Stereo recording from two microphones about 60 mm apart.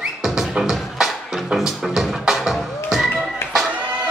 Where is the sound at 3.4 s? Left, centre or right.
Left.